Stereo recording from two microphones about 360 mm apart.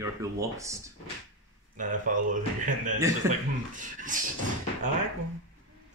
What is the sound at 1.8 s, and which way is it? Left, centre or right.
A man's voice, right.